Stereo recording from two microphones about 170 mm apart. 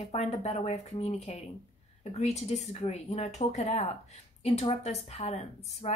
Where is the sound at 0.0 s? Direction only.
40° left (ahead or behind).